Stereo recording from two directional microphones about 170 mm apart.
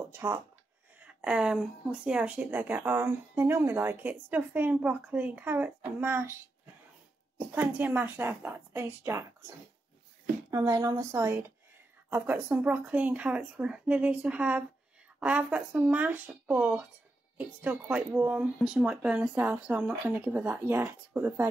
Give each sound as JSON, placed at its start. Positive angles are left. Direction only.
{"t": 0.1, "sound": "speech", "side_deg": -15}
{"t": 10.5, "sound": "speech", "side_deg": -20}